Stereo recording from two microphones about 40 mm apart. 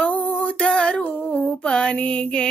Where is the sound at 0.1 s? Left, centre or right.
Left.